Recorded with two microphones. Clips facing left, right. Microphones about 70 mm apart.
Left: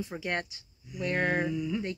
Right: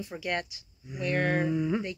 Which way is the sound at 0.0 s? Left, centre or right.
Left.